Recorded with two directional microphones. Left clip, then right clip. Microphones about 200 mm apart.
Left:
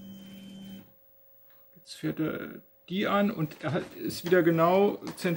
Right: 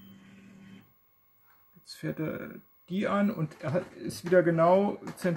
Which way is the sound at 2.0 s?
40° right (ahead or behind).